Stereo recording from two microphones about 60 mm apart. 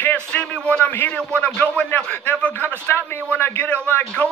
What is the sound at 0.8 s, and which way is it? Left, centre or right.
Speech, left.